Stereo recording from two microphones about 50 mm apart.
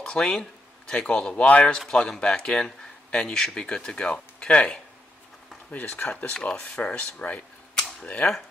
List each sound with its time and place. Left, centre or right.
0.0 s speech: centre
1.9 s speech: centre
5.9 s speech: centre